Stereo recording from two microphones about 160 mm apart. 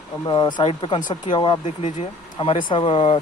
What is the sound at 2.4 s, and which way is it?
Speech, 30° left (ahead or behind).